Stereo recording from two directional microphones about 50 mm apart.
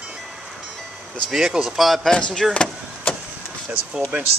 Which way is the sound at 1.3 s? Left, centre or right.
Centre.